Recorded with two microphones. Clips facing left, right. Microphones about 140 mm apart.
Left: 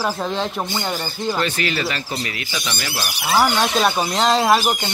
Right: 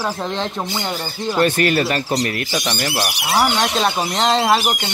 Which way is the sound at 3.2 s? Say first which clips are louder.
Left 1 dB; 5° right (ahead or behind).